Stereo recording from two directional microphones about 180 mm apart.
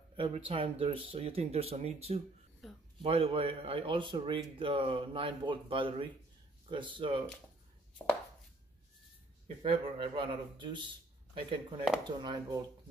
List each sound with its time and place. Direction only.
0.1 s a sound: 30° right (ahead or behind)
0.5 s speech: 30° right (ahead or behind)
2.6 s speech: centre (ahead or behind)
3.0 s speech: 35° right (ahead or behind)
9.6 s speech: 30° right (ahead or behind)